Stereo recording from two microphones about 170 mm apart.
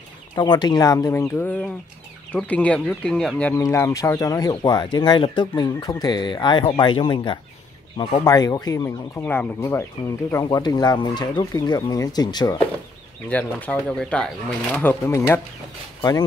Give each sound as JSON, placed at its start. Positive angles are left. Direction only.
{"t": 0.4, "sound": "speech", "side_deg": 25}
{"t": 3.5, "sound": "speech", "side_deg": 15}
{"t": 13.3, "sound": "speech", "side_deg": 10}